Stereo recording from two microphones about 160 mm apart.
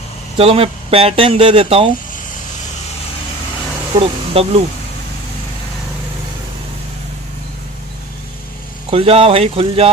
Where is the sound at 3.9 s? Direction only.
35° right (ahead or behind).